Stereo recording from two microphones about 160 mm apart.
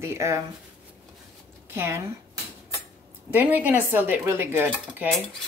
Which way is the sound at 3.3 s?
10° right (ahead or behind).